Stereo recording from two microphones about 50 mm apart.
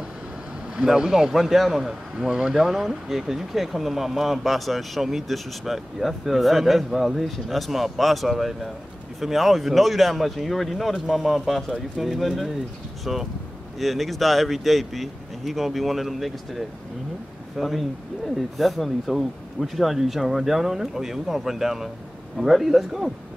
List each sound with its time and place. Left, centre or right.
0.7 s speech: centre
1.3 s speech: centre